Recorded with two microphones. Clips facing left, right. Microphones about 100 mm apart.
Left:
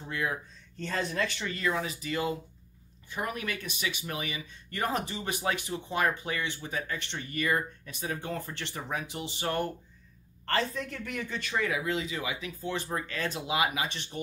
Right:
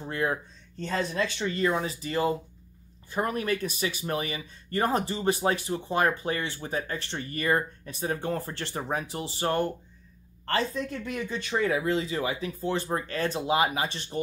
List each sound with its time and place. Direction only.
0.0 s speech: 35° right (ahead or behind)
0.8 s speech: 25° right (ahead or behind)
10.5 s speech: 20° right (ahead or behind); by 14.2 s 35° right (ahead or behind)